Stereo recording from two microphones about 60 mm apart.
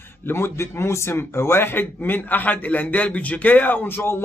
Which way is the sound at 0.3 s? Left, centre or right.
Left.